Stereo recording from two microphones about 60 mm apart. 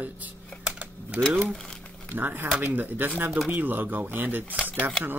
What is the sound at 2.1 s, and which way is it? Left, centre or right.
Speech, right.